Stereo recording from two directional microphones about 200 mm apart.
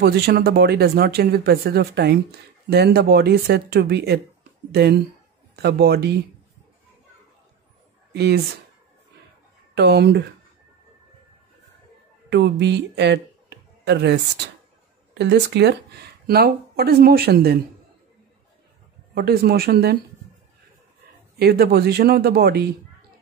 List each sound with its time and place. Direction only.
0.0 s speech: 50° right (ahead or behind)
5.6 s speech: 55° right (ahead or behind)
8.1 s speech: 55° right (ahead or behind)
9.8 s speech: 55° right (ahead or behind)
12.3 s speech: 60° right (ahead or behind)
19.1 s speech: 50° right (ahead or behind)
21.4 s speech: 55° right (ahead or behind)